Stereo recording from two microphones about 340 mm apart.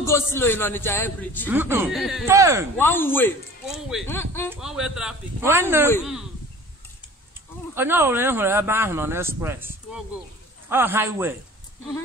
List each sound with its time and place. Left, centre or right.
0.0 s speech: centre
1.5 s speech: centre
2.8 s speech: centre
7.7 s speech: centre